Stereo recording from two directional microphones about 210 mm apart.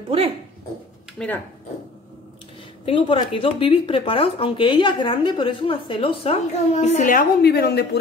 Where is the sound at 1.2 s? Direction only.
5° left (ahead or behind).